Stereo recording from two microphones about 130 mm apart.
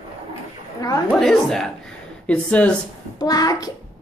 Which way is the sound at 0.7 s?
30° left (ahead or behind).